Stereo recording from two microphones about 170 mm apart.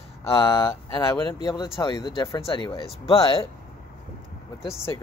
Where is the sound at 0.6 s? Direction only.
15° left (ahead or behind).